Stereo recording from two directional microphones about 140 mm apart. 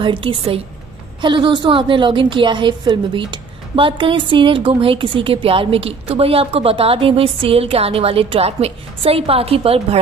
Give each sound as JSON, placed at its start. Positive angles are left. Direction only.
{"t": 0.0, "sound": "a woman's voice", "side_deg": -35}